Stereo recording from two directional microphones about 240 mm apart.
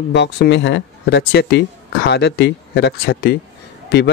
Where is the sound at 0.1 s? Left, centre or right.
Left.